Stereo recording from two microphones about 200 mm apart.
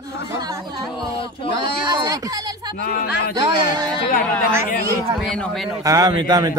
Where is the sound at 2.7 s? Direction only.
50° left (ahead or behind).